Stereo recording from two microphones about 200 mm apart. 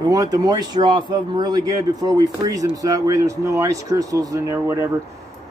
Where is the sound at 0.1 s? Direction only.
20° right (ahead or behind).